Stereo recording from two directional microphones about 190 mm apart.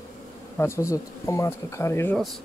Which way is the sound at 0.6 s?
15° left (ahead or behind).